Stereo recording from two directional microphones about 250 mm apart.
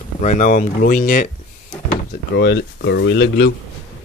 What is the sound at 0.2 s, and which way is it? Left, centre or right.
Speech, left.